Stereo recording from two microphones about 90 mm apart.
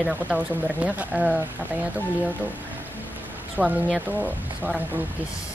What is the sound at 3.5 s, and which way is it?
Speech, 15° right (ahead or behind).